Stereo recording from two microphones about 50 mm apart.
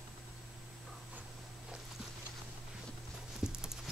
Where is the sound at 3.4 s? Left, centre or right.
Centre.